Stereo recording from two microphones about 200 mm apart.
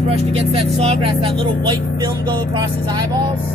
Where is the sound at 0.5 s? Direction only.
30° right (ahead or behind).